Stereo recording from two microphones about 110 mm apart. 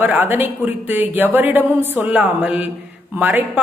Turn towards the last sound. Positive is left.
turn(degrees=-15)  # may be behind; listen again after turning